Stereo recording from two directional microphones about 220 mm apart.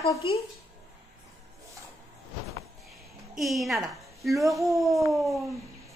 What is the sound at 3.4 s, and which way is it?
A woman's voice, centre (ahead or behind).